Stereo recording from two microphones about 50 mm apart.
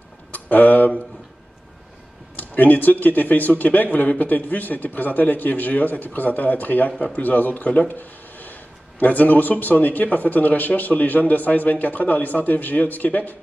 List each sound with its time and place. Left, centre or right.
0.3 s speech: left
2.3 s speech: left
7.9 s a sound: left
9.0 s speech: left